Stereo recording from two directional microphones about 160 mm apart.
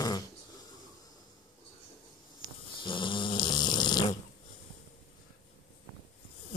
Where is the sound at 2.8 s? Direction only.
30° left (ahead or behind).